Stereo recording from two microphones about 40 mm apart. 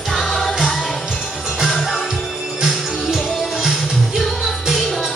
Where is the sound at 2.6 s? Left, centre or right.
Centre.